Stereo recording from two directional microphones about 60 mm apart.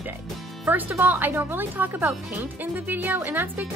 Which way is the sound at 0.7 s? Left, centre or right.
Right.